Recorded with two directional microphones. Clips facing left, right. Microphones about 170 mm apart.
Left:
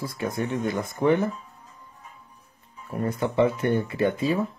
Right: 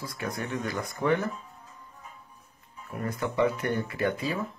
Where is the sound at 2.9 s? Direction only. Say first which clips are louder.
Left 5 dB; 30° left (ahead or behind).